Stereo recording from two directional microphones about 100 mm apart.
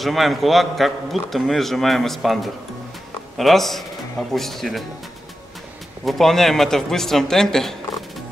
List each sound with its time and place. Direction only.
0.0 s a man's voice: centre (ahead or behind)
6.0 s a man's voice: centre (ahead or behind)